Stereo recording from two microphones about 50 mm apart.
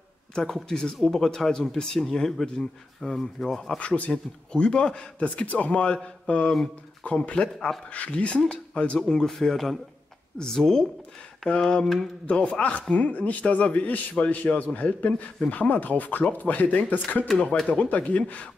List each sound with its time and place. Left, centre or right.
0.3 s speech: centre
3.7 s speech: left
9.0 s a man's voice: centre; by 18.5 s left